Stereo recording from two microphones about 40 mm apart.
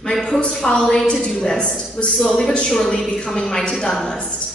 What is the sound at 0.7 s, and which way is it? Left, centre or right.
Speech, left.